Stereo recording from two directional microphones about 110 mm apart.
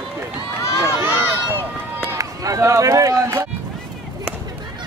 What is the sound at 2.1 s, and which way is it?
Speech, 30° right (ahead or behind).